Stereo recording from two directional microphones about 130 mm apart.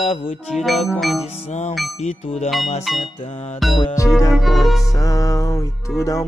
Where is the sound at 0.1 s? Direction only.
45° left (ahead or behind).